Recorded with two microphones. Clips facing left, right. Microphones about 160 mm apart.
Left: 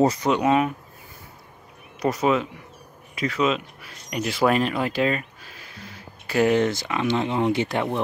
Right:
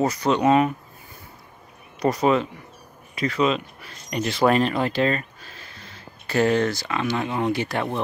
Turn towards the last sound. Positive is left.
turn(degrees=20)  # may be behind; listen again after turning